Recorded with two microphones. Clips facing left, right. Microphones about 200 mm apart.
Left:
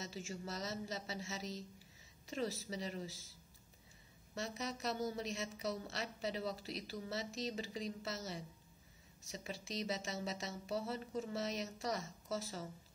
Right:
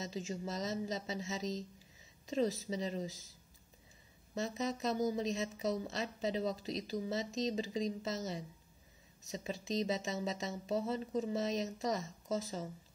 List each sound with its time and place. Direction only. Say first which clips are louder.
0.3 s a woman's voice: right 5 dB; 20° right (ahead or behind)
4.4 s a woman's voice: right 6 dB; 20° right (ahead or behind)